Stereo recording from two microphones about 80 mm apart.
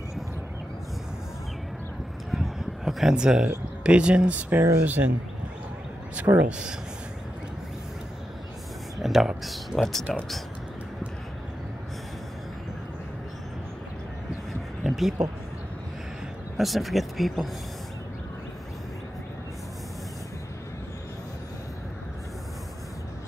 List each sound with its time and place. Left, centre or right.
2.3 s a sound: centre
3.4 s speech: centre
6.1 s speech: centre
8.9 s speech: centre
14.8 s a sound: centre
16.5 s speech: centre